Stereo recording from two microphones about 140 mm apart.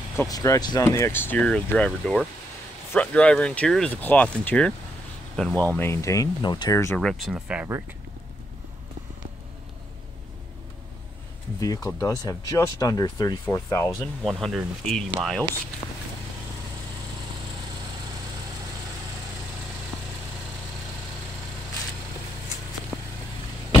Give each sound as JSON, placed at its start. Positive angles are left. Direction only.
{"t": 0.3, "sound": "speech", "side_deg": 25}
{"t": 7.0, "sound": "speech", "side_deg": 0}
{"t": 11.6, "sound": "speech", "side_deg": 25}
{"t": 13.8, "sound": "speech", "side_deg": 0}
{"t": 19.9, "sound": "vehicle", "side_deg": 0}